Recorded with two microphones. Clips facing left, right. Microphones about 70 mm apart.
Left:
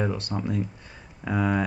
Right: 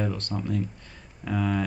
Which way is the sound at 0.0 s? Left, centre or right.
Centre.